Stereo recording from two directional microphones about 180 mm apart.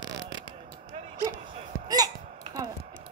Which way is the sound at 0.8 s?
30° right (ahead or behind).